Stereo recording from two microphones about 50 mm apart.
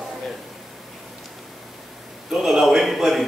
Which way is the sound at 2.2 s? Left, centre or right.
Centre.